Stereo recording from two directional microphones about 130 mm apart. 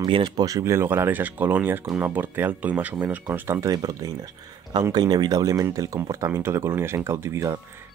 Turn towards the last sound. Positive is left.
turn(degrees=-20)  # may be behind; listen again after turning